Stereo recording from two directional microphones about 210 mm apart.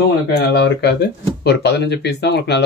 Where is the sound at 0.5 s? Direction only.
55° left (ahead or behind).